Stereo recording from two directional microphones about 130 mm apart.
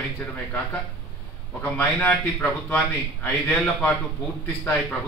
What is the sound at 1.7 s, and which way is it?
Speech, 10° left (ahead or behind).